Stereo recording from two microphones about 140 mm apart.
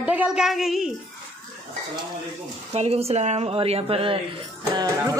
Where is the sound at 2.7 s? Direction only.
50° right (ahead or behind).